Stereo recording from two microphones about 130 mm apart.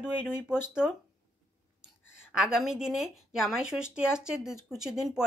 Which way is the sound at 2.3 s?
5° right (ahead or behind).